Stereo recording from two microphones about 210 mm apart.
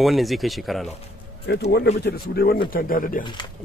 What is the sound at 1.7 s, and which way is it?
Speech, 50° left (ahead or behind).